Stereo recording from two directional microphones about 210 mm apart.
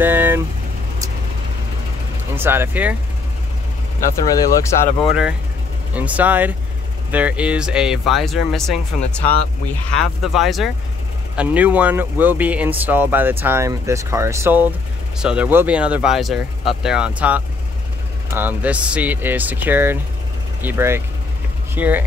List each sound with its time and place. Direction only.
0.0 s vehicle: 10° right (ahead or behind)
2.3 s speech: 10° right (ahead or behind)
4.3 s speech: 15° left (ahead or behind)
5.0 s speech: 5° right (ahead or behind)
9.9 s speech: centre (ahead or behind)